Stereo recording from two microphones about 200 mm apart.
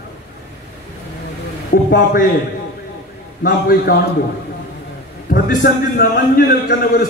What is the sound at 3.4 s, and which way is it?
Speech, 50° left (ahead or behind).